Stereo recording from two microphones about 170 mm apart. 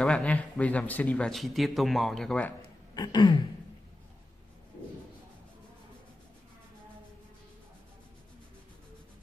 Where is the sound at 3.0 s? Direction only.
25° left (ahead or behind).